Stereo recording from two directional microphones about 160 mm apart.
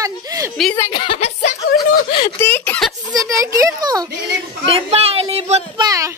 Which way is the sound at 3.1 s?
20° right (ahead or behind).